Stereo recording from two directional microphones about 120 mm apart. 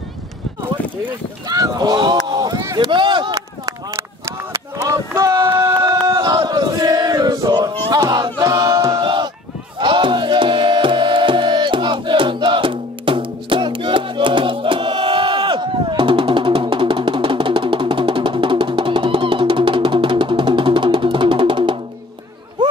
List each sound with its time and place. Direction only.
1.5 s speech: 30° right (ahead or behind)
2.2 s a sound: 35° right (ahead or behind)
6.2 s chant: 35° right (ahead or behind)
7.9 s a sound: 35° right (ahead or behind)
9.0 s honk: 40° right (ahead or behind)
9.8 s tabla: 45° right (ahead or behind)